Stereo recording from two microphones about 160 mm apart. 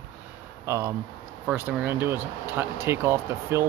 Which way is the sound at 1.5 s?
10° right (ahead or behind).